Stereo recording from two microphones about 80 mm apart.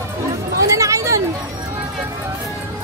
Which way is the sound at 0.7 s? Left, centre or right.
Right.